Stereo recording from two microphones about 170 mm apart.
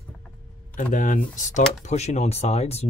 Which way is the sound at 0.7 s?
55° left (ahead or behind).